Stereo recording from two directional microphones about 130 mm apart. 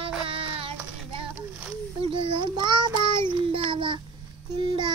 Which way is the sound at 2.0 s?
45° right (ahead or behind).